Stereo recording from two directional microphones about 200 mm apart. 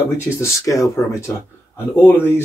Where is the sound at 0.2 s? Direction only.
15° left (ahead or behind).